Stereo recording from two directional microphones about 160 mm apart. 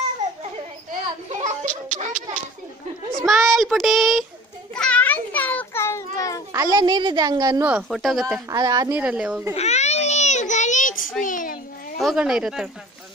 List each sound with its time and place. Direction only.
1.4 s music: 45° right (ahead or behind)
3.2 s a child's voice: centre (ahead or behind)
4.7 s children playing: 10° left (ahead or behind)
6.5 s a woman's voice: 25° right (ahead or behind)
7.6 s a child's voice: 5° right (ahead or behind)
8.5 s a woman's voice: 25° right (ahead or behind)
8.9 s a woman's voice: 5° right (ahead or behind)
9.6 s a sound: 45° left (ahead or behind)
12.0 s a child's voice: centre (ahead or behind)